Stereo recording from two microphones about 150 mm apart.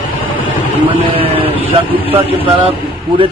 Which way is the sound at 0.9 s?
35° right (ahead or behind).